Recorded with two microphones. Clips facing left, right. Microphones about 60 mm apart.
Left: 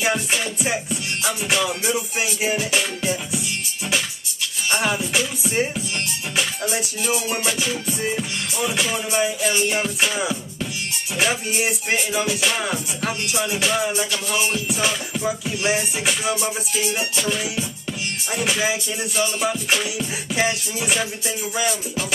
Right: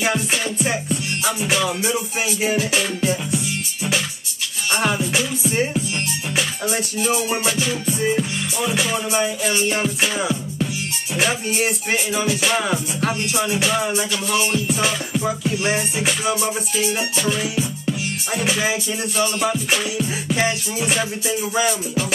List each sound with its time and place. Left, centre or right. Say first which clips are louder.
0.0 s music: right 1 dB; centre
1.9 s music: right 1 dB; centre
4.6 s music: right 2 dB; centre
6.7 s music: right 2 dB; centre
8.7 s music: right 3 dB; centre
9.1 s music: left 2 dB; centre
14.3 s music: right 4 dB; centre
18.6 s music: right 1 dB; centre
20.3 s music: left 1 dB; centre